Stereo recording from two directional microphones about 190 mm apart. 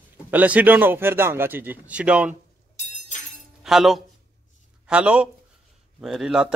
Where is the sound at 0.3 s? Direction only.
10° right (ahead or behind).